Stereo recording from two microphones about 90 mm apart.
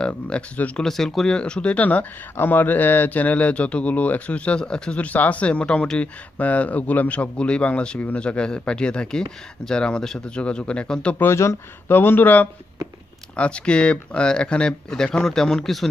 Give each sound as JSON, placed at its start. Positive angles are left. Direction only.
{"t": 0.0, "sound": "speech", "side_deg": 15}
{"t": 11.1, "sound": "speech", "side_deg": 30}